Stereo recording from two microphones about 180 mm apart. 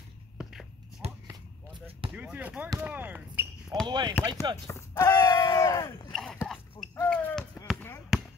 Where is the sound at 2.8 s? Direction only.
10° right (ahead or behind).